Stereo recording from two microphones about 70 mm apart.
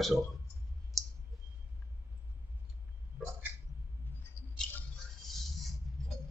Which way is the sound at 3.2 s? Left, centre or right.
Right.